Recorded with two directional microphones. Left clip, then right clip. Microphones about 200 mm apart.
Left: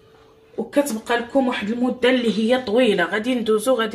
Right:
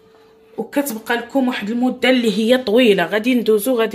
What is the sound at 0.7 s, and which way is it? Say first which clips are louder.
Speech: even; 40° right (ahead or behind).